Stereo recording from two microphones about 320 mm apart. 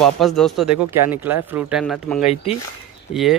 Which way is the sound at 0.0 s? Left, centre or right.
Centre.